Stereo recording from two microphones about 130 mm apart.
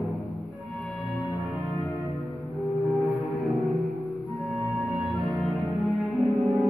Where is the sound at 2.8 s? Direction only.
Centre (ahead or behind).